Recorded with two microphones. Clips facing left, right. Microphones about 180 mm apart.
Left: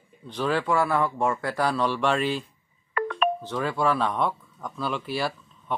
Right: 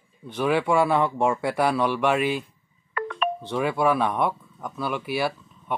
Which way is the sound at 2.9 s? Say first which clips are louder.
Left 2 dB; 50° left (ahead or behind).